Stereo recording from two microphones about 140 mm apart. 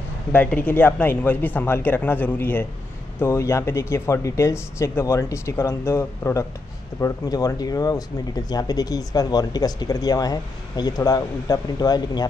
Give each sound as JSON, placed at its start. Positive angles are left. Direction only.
{"t": 0.3, "sound": "speech", "side_deg": 10}